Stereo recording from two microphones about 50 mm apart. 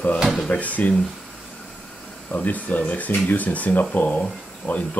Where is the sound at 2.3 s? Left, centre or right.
Left.